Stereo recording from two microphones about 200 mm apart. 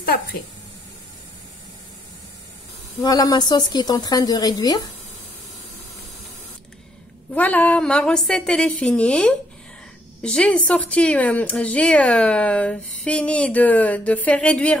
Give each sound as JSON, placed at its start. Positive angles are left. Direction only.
{"t": 0.0, "sound": "a woman's voice", "side_deg": 50}
{"t": 3.0, "sound": "a woman's voice", "side_deg": 20}
{"t": 7.3, "sound": "a woman's voice", "side_deg": 10}